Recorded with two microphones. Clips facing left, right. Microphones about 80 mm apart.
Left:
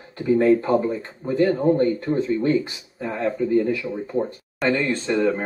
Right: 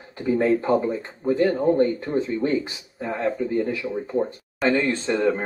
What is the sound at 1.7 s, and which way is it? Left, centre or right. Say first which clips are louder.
Speech: left 1 dB; centre.